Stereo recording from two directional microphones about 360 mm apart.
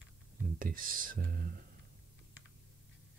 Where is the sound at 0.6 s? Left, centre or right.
Right.